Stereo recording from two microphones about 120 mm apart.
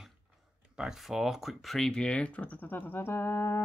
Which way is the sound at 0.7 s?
5° right (ahead or behind).